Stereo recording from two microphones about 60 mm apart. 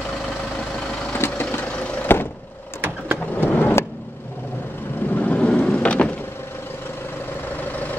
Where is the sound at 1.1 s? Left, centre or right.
Left.